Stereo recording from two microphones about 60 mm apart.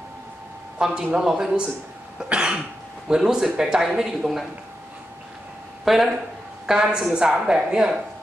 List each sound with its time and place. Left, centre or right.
0.7 s a man's voice: centre
2.2 s cough: centre
3.1 s speech: centre
5.9 s a woman's voice: centre